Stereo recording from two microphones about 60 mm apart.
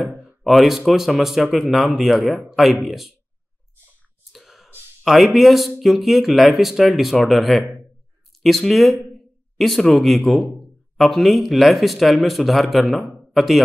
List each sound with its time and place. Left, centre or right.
0.4 s speech: centre
4.3 s a sound: centre
5.0 s speech: centre